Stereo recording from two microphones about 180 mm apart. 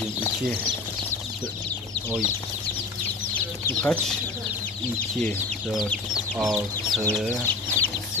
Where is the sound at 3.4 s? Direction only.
10° left (ahead or behind).